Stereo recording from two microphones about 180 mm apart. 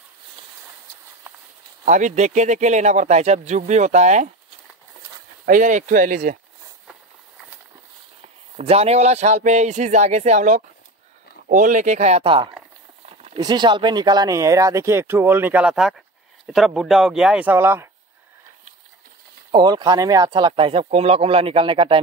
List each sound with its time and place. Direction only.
1.9 s speech: 45° right (ahead or behind)
5.4 s speech: 45° right (ahead or behind)
8.5 s speech: 35° right (ahead or behind)
13.0 s a sound: 40° right (ahead or behind)
13.4 s speech: 25° right (ahead or behind)
19.5 s speech: 20° right (ahead or behind)